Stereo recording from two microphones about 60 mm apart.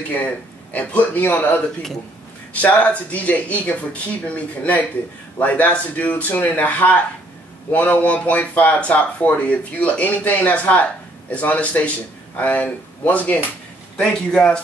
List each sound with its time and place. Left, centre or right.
0.7 s speech: left
13.9 s a man's voice: centre